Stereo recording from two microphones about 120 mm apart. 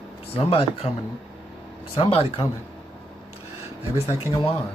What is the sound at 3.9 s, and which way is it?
Speech, 60° left (ahead or behind).